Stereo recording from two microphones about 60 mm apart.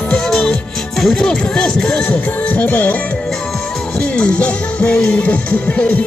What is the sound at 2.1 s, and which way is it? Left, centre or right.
Music, left.